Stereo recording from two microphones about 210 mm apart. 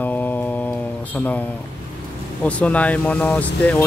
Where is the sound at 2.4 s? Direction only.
5° left (ahead or behind).